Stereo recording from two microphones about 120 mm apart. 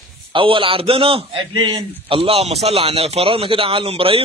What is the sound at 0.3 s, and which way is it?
A man's voice, 45° right (ahead or behind).